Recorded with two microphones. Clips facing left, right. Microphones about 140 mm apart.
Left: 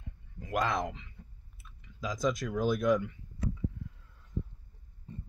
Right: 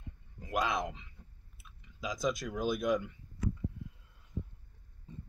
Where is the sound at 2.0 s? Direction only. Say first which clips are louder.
Left 2 dB; 20° right (ahead or behind).